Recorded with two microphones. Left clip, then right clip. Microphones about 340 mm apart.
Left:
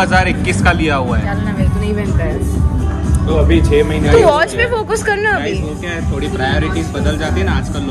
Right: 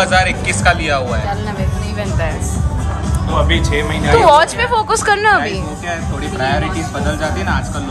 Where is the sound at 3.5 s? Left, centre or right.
Centre.